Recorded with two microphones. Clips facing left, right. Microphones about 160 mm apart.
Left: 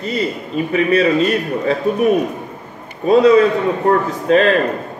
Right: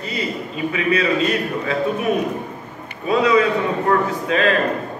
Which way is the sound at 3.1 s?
35° left (ahead or behind).